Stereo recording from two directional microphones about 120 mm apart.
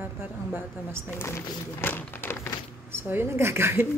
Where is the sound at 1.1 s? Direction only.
20° left (ahead or behind).